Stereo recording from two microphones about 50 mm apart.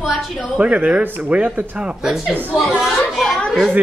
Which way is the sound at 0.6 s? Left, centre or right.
Right.